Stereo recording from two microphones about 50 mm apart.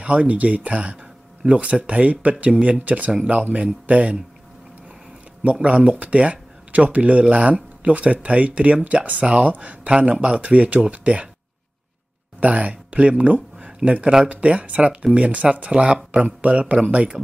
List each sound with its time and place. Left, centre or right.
0.0 s speech: right
5.4 s speech: right
12.4 s speech: right